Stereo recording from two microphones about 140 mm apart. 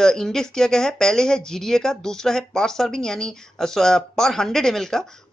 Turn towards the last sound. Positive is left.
turn(degrees=5)  # may be behind; listen again after turning